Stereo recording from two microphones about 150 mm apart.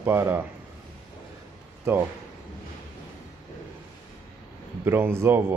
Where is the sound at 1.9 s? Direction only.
15° right (ahead or behind).